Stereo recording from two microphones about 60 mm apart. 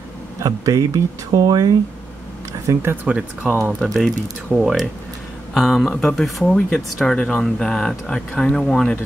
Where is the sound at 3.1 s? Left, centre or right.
Right.